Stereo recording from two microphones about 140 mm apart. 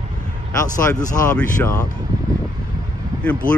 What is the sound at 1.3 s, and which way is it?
Speech, 10° left (ahead or behind).